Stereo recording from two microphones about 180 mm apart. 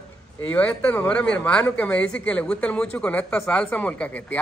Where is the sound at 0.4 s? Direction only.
10° left (ahead or behind).